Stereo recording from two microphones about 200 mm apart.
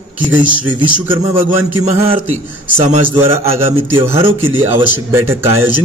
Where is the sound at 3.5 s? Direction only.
30° right (ahead or behind).